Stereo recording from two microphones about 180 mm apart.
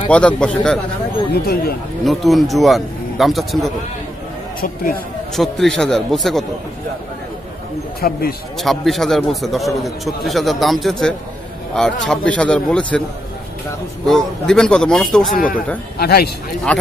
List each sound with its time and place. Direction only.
0.4 s a man's voice: 5° left (ahead or behind)
1.3 s speech: 60° left (ahead or behind)
2.0 s a man's voice: centre (ahead or behind)
4.6 s speech: 55° left (ahead or behind)
5.3 s a man's voice: centre (ahead or behind)
8.0 s speech: 60° left (ahead or behind)
8.5 s a man's voice: centre (ahead or behind)
14.0 s a man's voice: centre (ahead or behind)
15.3 s speech: 50° left (ahead or behind)
16.0 s speech: 60° left (ahead or behind)
16.7 s a man's voice: 5° left (ahead or behind)